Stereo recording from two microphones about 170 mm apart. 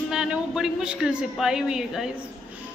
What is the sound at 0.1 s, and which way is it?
A woman's voice, 5° right (ahead or behind).